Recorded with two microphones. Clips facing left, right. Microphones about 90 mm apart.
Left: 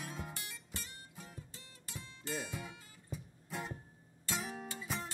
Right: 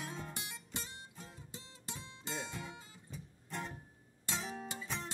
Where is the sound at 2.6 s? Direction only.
10° left (ahead or behind).